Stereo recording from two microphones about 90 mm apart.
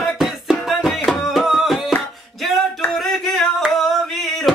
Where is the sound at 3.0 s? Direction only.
5° left (ahead or behind).